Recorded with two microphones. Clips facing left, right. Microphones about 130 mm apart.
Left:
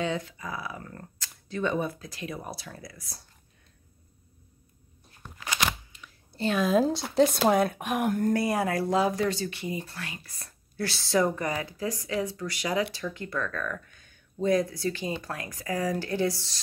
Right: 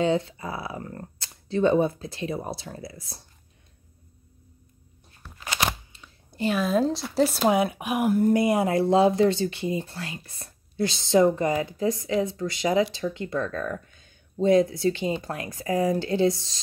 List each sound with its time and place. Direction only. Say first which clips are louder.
0.0 s speech: right 7 dB; 30° right (ahead or behind)
5.9 s a sound: left 1 dB; 30° right (ahead or behind)
6.3 s speech: even; 10° right (ahead or behind)
8.4 s speech: right 5 dB; 20° right (ahead or behind)